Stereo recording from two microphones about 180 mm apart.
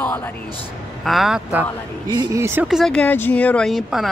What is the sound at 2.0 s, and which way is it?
Speech, 20° right (ahead or behind).